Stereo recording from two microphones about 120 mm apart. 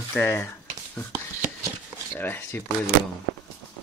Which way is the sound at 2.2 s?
20° left (ahead or behind).